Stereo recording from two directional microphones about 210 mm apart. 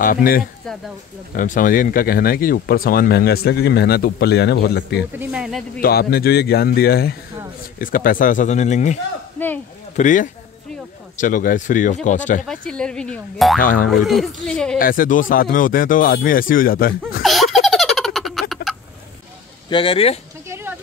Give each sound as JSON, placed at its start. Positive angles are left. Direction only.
{"t": 0.0, "sound": "speech", "side_deg": 45}
{"t": 0.7, "sound": "speech", "side_deg": 0}
{"t": 1.3, "sound": "speech", "side_deg": 40}
{"t": 5.1, "sound": "speech", "side_deg": -5}
{"t": 5.8, "sound": "speech", "side_deg": 45}
{"t": 9.9, "sound": "speech", "side_deg": 35}
{"t": 12.4, "sound": "speech", "side_deg": 5}
{"t": 13.6, "sound": "speech", "side_deg": 40}
{"t": 13.8, "sound": "speech", "side_deg": 0}
{"t": 14.8, "sound": "speech", "side_deg": 40}
{"t": 17.2, "sound": "giggle", "side_deg": 0}
{"t": 19.7, "sound": "speech", "side_deg": 25}
{"t": 20.4, "sound": "a sound", "side_deg": -10}